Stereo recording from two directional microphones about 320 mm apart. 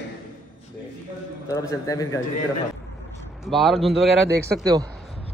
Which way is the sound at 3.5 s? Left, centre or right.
Centre.